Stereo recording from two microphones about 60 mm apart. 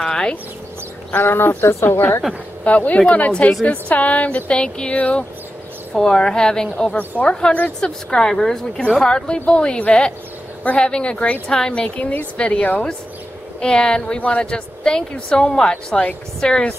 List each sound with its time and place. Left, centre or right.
0.0 s a sound: centre
1.1 s speech: left
2.6 s speech: left
5.9 s speech: centre